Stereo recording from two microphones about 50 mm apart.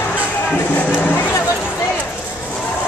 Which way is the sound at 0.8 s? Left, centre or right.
Left.